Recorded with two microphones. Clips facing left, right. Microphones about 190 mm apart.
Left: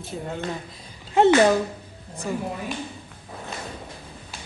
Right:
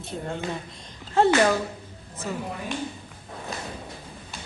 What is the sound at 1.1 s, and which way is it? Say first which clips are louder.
Speech: left 3 dB; 20° left (ahead or behind).